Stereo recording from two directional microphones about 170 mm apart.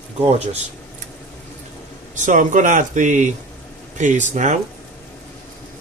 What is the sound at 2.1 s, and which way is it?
Speech, 45° right (ahead or behind).